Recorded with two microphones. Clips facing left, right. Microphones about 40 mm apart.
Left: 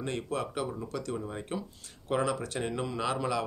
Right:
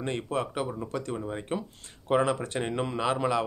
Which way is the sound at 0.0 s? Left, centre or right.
Right.